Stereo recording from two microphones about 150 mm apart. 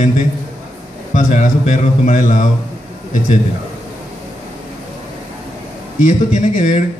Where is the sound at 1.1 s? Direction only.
55° left (ahead or behind).